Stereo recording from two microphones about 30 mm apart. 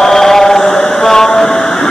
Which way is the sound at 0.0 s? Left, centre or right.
Centre.